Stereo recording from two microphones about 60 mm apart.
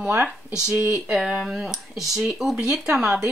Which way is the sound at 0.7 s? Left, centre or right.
Right.